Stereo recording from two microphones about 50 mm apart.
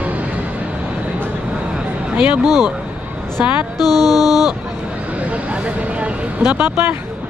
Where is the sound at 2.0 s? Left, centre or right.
Right.